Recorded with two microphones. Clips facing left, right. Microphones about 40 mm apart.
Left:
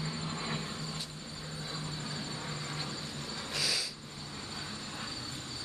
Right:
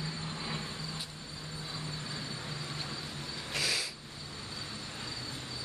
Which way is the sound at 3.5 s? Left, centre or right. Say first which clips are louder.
Right 1 dB; right.